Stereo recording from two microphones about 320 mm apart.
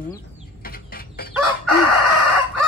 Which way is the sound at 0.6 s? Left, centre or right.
Left.